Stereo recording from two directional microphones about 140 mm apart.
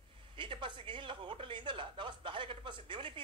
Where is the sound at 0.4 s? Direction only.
35° right (ahead or behind).